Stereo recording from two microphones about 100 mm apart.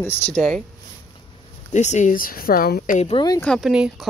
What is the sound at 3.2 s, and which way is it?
Speech, 55° left (ahead or behind).